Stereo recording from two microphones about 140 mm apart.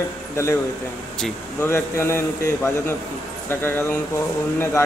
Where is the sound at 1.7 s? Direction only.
20° left (ahead or behind).